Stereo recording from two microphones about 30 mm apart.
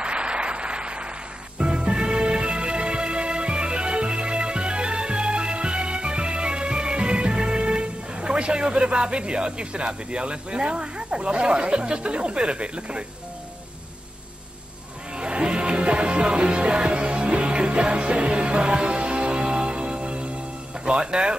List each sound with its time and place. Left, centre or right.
0.0 s applause: right
1.6 s music: right
15.1 s music: right